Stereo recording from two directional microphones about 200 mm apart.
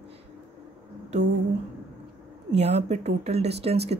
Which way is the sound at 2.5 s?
35° right (ahead or behind).